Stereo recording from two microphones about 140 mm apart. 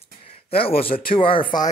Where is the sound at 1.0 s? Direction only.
40° left (ahead or behind).